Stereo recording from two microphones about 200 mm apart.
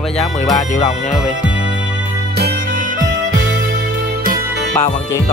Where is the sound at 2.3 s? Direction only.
50° right (ahead or behind).